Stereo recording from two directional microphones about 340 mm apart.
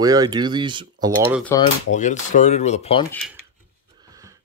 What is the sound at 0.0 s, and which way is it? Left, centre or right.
Speech, centre.